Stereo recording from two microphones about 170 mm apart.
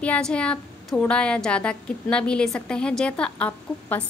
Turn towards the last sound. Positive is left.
turn(degrees=10)  # may be behind; listen again after turning